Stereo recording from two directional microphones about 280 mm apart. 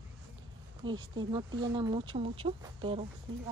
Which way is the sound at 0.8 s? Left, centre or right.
Centre.